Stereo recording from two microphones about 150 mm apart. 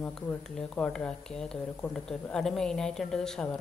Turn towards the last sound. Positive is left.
turn(degrees=5)  # may be behind; listen again after turning